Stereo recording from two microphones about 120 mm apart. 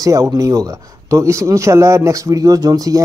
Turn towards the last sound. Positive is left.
turn(degrees=-30)  # may be behind; listen again after turning